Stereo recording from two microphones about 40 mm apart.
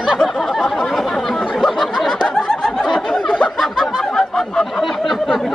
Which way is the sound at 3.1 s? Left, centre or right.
Centre.